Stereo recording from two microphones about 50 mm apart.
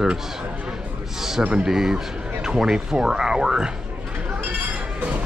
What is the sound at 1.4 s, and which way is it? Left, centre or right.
Speech, right.